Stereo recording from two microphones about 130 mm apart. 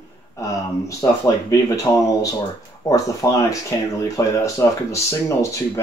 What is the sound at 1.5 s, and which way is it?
Speech, 25° left (ahead or behind).